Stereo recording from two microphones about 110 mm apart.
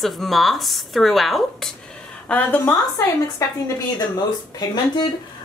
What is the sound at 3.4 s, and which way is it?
Speech, 30° left (ahead or behind).